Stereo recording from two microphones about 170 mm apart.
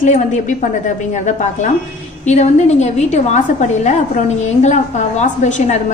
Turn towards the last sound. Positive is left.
turn(degrees=45)  # may be behind; listen again after turning